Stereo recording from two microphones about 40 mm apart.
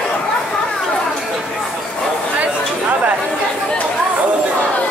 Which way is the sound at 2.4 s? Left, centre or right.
Right.